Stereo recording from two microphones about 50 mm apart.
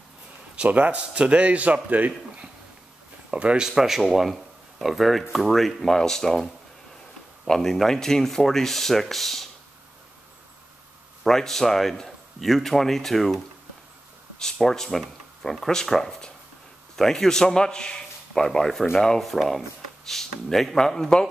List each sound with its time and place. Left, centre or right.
0.7 s a man's voice: right
3.3 s speech: right
3.6 s a man's voice: centre
11.2 s a man's voice: centre
14.4 s a man's voice: centre